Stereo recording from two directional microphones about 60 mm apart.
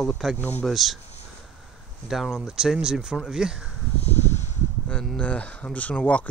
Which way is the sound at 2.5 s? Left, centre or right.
Centre.